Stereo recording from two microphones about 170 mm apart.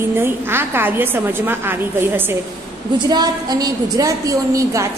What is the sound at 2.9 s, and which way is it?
A woman's voice, 25° right (ahead or behind).